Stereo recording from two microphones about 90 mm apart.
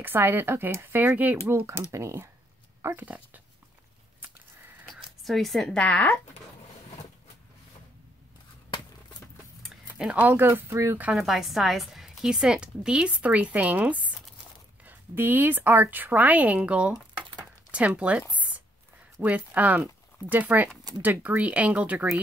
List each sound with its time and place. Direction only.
0.0 s speech: 25° right (ahead or behind)
1.7 s speech: 30° right (ahead or behind)
4.9 s speech: centre (ahead or behind)
9.7 s speech: 10° right (ahead or behind); by 11.0 s 30° right (ahead or behind)
11.1 s a woman's voice: centre (ahead or behind)
17.4 s a sound: 15° right (ahead or behind)
19.2 s a woman's voice: 15° right (ahead or behind)